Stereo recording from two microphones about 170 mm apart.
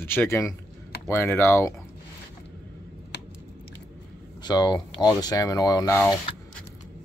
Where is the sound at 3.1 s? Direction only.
85° left.